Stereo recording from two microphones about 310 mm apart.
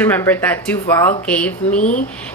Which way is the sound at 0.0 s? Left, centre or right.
Centre.